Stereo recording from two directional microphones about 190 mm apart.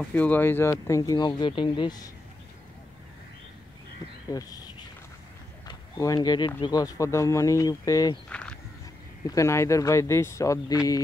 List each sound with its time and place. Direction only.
0.0 s speech: 10° left (ahead or behind)
4.3 s speech: 20° left (ahead or behind)
5.7 s speech: 20° left (ahead or behind)
8.3 s a sound: 5° left (ahead or behind)
9.3 s speech: 15° left (ahead or behind)